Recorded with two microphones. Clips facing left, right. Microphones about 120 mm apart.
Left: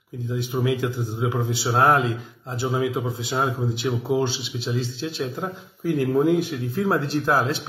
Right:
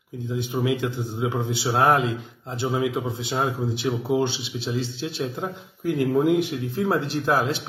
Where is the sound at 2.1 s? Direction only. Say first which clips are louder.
Left 1 dB; 25° right (ahead or behind).